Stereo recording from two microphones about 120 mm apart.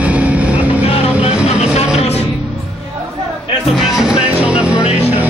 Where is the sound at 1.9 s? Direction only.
60° left (ahead or behind).